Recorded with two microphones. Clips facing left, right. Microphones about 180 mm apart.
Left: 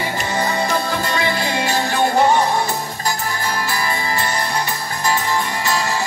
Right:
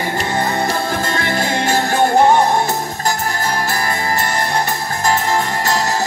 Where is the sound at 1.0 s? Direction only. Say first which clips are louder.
Right 1 dB; 50° right (ahead or behind).